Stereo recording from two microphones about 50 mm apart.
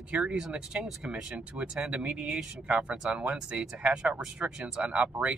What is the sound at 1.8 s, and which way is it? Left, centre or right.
Speech, centre.